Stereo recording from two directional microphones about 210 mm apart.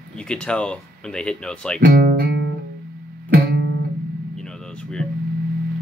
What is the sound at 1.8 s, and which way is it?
Music, 45° right (ahead or behind).